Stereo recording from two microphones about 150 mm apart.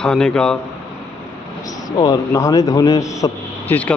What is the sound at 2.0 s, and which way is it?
A man's voice, 25° left (ahead or behind).